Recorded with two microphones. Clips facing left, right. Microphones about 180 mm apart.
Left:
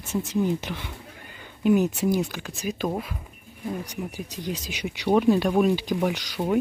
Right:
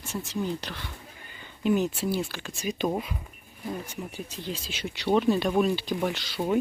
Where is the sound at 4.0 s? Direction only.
10° left (ahead or behind).